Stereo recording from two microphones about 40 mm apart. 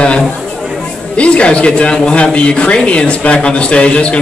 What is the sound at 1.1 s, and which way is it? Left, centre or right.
Speech, left.